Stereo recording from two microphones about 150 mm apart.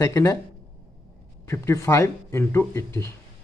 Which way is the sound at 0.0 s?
20° left (ahead or behind).